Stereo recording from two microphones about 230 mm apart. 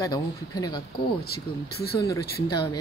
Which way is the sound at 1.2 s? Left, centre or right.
Left.